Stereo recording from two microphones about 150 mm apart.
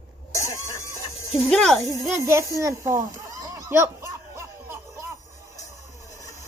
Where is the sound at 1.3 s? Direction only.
Centre (ahead or behind).